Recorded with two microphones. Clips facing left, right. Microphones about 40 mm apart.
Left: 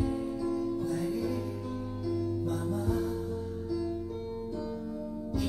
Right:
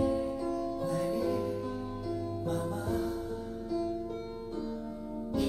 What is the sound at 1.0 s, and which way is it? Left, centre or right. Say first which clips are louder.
Music: right 1 dB; right.